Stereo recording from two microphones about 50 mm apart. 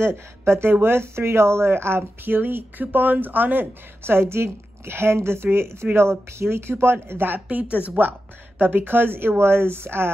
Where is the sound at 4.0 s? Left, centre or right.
Right.